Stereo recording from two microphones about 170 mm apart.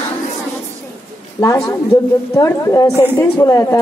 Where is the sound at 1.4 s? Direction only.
20° left (ahead or behind).